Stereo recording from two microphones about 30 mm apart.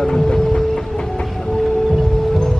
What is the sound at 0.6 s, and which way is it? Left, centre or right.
Train, centre.